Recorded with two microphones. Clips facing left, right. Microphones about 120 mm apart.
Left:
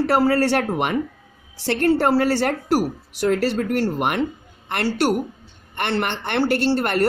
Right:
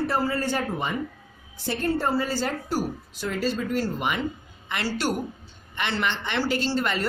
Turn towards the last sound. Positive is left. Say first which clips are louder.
# left 6 dB
turn(degrees=60)  # may be behind; listen again after turning